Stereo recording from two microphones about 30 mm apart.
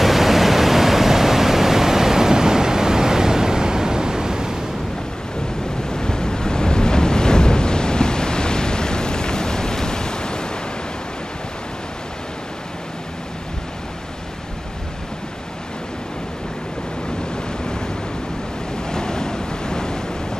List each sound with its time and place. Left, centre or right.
0.0 s pink noise: centre; by 4.6 s right
5.9 s waves: left
18.9 s waves: left